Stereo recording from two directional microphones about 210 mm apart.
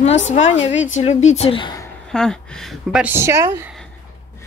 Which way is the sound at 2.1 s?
5° left (ahead or behind).